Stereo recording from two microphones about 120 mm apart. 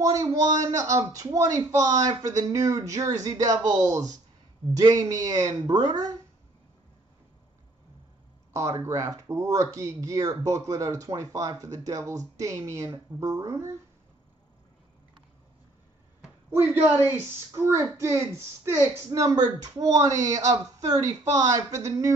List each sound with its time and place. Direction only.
0.0 s a woman's voice: 25° right (ahead or behind)
8.5 s speech: 25° right (ahead or behind)
16.4 s speech: 15° right (ahead or behind)